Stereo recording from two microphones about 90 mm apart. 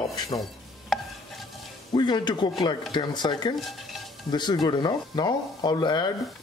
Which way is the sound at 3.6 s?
Centre (ahead or behind).